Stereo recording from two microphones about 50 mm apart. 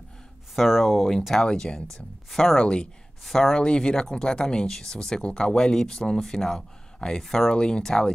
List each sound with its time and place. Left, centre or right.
0.6 s speech: centre
1.4 s speech: centre